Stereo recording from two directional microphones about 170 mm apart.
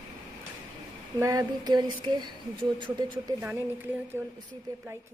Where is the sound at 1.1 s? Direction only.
20° right (ahead or behind).